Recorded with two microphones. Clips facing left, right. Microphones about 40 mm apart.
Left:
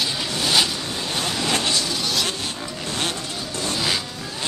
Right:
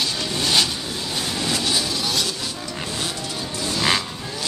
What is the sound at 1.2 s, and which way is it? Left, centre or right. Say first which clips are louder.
Train: left 2 dB; left.